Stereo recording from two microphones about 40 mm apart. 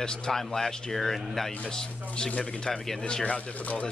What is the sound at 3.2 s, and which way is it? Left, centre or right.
Speech, left.